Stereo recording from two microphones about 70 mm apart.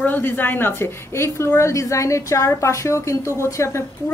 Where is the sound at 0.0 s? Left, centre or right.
Left.